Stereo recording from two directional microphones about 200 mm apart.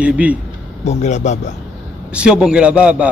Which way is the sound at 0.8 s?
35° left (ahead or behind).